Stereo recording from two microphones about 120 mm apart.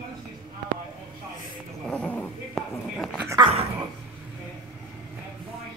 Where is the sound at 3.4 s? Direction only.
55° right (ahead or behind).